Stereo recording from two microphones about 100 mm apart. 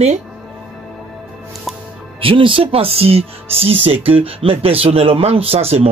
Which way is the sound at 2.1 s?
60° right (ahead or behind).